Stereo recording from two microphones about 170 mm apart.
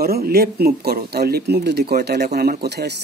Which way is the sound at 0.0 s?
65° right (ahead or behind).